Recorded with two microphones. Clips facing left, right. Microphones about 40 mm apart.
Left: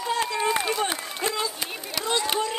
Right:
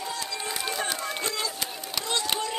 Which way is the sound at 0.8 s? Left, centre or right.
Centre.